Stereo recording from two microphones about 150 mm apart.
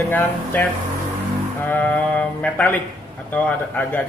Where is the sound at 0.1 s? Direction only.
10° left (ahead or behind).